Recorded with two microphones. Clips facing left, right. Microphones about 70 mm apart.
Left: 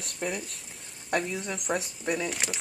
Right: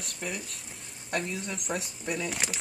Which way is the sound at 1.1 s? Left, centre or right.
Centre.